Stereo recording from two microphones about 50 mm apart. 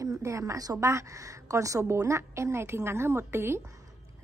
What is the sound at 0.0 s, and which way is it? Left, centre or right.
A woman's voice, right.